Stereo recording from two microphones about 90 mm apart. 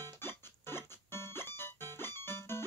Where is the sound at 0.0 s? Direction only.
25° left (ahead or behind).